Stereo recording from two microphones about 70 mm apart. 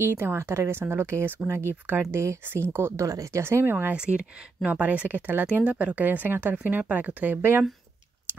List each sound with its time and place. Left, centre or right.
0.0 s speech: right
3.1 s speech: right
3.4 s speech: right
3.9 s speech: centre